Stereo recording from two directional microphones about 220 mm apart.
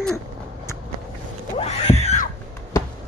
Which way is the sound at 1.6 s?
30° left (ahead or behind).